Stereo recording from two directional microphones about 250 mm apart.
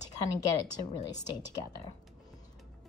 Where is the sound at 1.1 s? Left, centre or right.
Centre.